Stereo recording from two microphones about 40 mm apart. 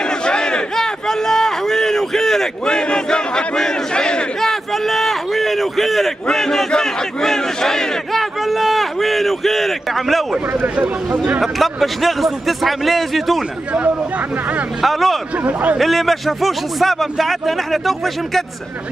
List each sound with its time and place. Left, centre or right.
0.0 s battle cry: left
4.4 s a sound: centre
6.7 s battle cry: centre
10.4 s speech: right
11.4 s a man's voice: centre
13.7 s speech: right
14.8 s a man's voice: centre
15.3 s speech: right
15.8 s a man's voice: centre